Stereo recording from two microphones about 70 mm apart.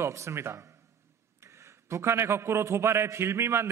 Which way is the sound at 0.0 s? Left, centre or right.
Right.